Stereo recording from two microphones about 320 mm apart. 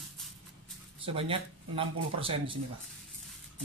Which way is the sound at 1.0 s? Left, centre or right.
Centre.